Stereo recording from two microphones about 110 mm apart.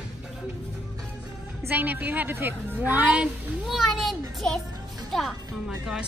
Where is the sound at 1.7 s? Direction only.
15° right (ahead or behind); by 4.6 s 5° left (ahead or behind).